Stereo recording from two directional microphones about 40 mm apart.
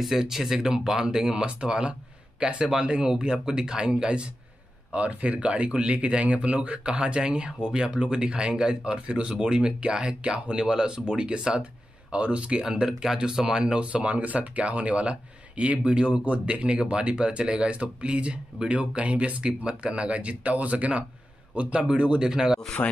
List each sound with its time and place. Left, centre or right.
0.0 s speech: centre
4.9 s speech: right
13.8 s speech: right
19.6 s speech: right
22.2 s speech: centre
22.8 s speech: left